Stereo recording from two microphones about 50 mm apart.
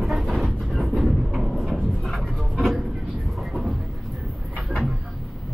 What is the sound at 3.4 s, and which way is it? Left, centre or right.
Vehicle, centre.